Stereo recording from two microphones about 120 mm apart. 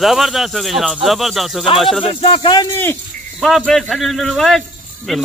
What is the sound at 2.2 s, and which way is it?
Speech, 45° left (ahead or behind).